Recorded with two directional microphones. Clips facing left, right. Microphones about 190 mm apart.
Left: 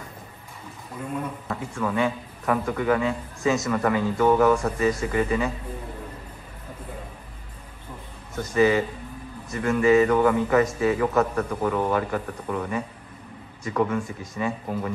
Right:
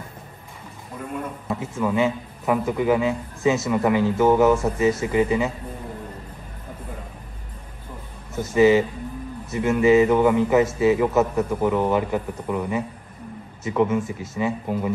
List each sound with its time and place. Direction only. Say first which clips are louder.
1.5 s a man's voice: right 4 dB; 10° right (ahead or behind)
8.5 s a man's voice: right 4 dB; 15° right (ahead or behind)
9.8 s mantra: right 2 dB; centre (ahead or behind)
10.1 s a man's voice: right 2 dB; 15° right (ahead or behind)